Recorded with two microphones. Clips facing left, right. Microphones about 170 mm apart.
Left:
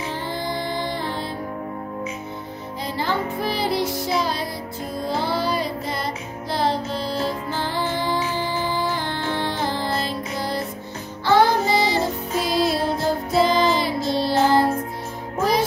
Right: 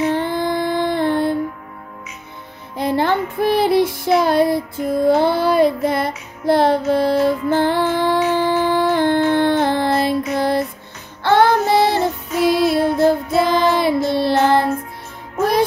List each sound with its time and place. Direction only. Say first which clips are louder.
0.0 s music: right 9 dB; 60° right (ahead or behind)
2.8 s music: right 8 dB; 60° right (ahead or behind)